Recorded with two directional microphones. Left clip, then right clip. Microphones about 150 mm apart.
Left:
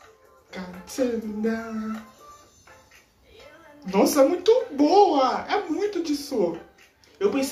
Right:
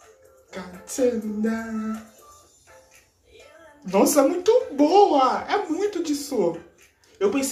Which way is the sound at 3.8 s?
15° right (ahead or behind).